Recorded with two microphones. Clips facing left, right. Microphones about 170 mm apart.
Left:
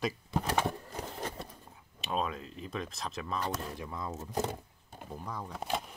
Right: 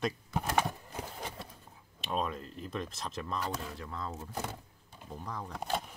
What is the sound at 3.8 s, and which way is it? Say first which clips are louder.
Speech: left 1 dB; 15° left (ahead or behind).